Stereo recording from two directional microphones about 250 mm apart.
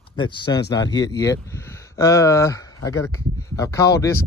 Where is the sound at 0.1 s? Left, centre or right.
Centre.